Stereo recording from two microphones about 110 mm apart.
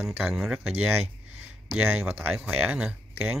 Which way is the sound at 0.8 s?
20° right (ahead or behind).